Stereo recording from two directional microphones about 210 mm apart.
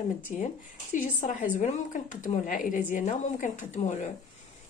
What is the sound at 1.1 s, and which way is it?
A woman's voice, 40° left (ahead or behind).